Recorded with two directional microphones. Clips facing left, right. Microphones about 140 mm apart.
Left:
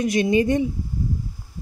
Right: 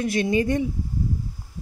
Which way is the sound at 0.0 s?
20° left (ahead or behind).